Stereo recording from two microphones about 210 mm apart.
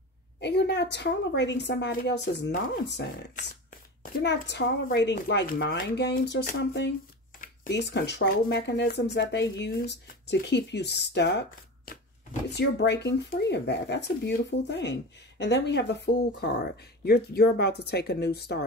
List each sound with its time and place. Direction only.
0.4 s speech: 55° left (ahead or behind)